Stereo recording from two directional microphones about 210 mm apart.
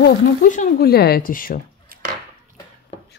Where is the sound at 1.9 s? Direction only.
45° right (ahead or behind).